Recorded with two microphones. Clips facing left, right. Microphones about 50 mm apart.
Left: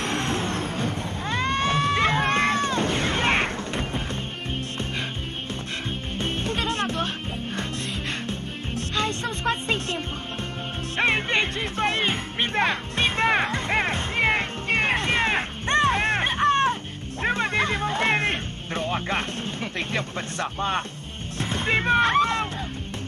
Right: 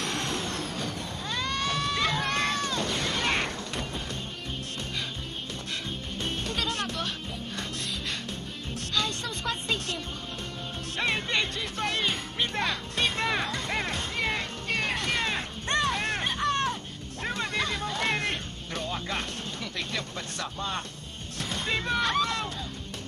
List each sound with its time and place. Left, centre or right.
0.0 s vehicle: left
6.1 s music: left
8.3 s music: left
11.0 s music: left